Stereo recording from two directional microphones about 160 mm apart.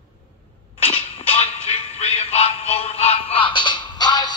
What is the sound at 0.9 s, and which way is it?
Music, 35° left (ahead or behind).